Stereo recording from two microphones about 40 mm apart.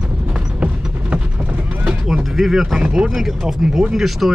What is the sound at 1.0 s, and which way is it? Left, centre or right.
Clip-clop, right.